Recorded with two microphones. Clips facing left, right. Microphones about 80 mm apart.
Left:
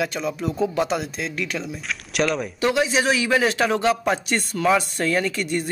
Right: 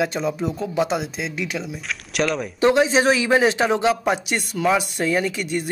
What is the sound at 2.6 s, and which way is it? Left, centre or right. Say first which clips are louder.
A man's voice: right 5 dB; right.